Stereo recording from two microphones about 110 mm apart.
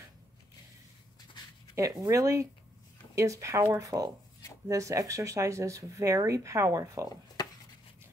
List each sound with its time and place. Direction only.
1.8 s speech: 30° right (ahead or behind)
7.4 s chopping: 40° left (ahead or behind)